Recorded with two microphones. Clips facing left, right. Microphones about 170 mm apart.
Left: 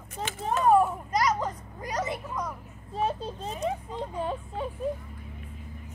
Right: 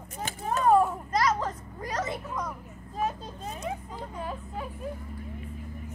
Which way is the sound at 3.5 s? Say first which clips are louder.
Left 5 dB; 25° left (ahead or behind).